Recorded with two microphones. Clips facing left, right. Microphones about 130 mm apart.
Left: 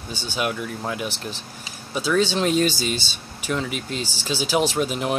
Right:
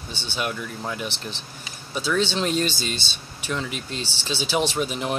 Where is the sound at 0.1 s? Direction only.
40° left (ahead or behind).